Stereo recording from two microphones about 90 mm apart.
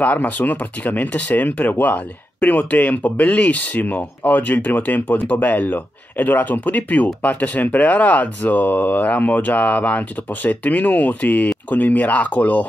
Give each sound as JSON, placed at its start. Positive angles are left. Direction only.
{"t": 0.0, "sound": "speech", "side_deg": 15}